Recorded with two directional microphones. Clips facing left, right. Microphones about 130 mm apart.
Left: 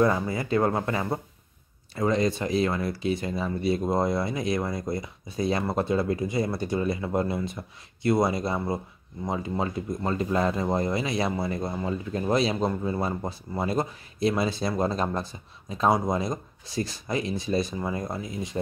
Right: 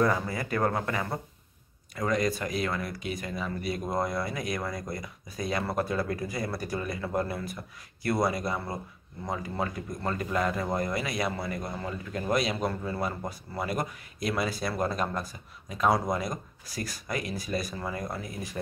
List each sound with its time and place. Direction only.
0.0 s speech: 25° left (ahead or behind)